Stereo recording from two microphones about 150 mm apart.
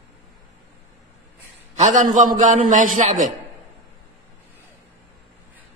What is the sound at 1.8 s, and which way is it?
A man's voice, 55° right (ahead or behind).